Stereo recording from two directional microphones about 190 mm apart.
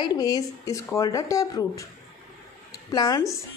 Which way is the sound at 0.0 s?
20° left (ahead or behind).